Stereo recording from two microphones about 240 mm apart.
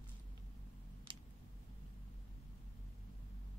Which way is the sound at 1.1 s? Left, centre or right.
Centre.